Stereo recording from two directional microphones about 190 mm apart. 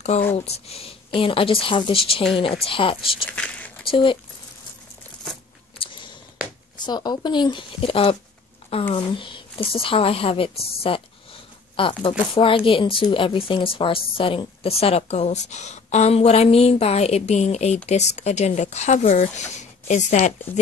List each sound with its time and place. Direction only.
0.1 s a woman's voice: 35° left (ahead or behind)
3.3 s a sound: 5° left (ahead or behind)
3.8 s speech: 25° left (ahead or behind)
6.9 s a woman's voice: 20° left (ahead or behind); by 20.6 s 35° left (ahead or behind)